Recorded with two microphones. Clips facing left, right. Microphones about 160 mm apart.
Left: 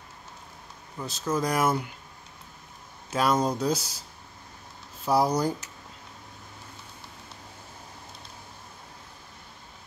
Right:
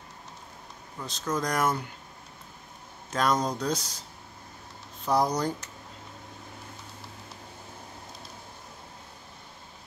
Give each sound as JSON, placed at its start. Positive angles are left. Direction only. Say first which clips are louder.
{"t": 0.9, "sound": "speech", "louder": "left 2 dB", "side_deg": 5}
{"t": 3.1, "sound": "speech", "louder": "left 2 dB", "side_deg": 5}
{"t": 5.0, "sound": "speech", "louder": "left 2 dB", "side_deg": 5}